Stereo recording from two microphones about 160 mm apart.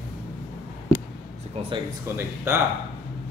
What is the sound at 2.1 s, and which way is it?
Speech, 15° right (ahead or behind).